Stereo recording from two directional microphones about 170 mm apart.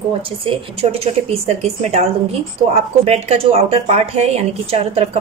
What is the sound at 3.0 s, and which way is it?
A woman's voice, 35° right (ahead or behind).